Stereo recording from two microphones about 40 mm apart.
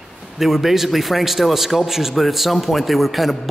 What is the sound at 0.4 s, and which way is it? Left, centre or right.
A man's voice, centre.